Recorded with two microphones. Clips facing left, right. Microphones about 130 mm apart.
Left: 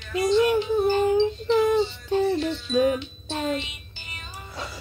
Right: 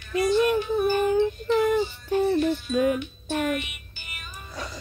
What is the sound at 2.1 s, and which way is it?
Music, 25° left (ahead or behind).